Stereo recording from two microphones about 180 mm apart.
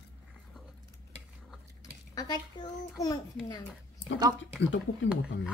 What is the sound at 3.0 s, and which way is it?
Speech, 20° left (ahead or behind).